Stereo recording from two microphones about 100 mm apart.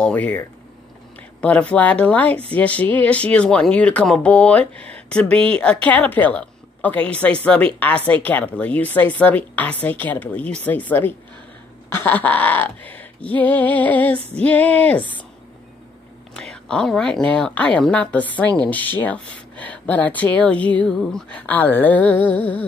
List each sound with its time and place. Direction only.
0.0 s speech: 15° left (ahead or behind)
16.3 s speech: 5° left (ahead or behind)